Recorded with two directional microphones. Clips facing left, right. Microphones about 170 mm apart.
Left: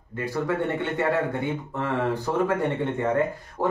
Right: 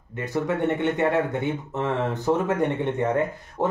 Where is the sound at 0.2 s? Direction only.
20° right (ahead or behind).